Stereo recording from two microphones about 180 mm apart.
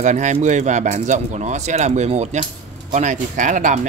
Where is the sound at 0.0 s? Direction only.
40° right (ahead or behind).